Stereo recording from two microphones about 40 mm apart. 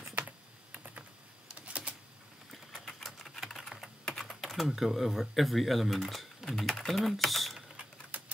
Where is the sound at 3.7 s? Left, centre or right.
Centre.